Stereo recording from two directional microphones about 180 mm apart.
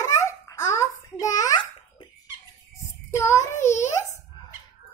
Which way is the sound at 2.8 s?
15° left (ahead or behind).